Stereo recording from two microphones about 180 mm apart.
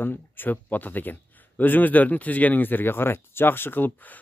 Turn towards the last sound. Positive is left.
turn(degrees=10)  # may be behind; listen again after turning